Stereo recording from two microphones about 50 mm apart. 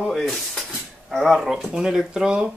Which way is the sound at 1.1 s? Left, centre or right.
Centre.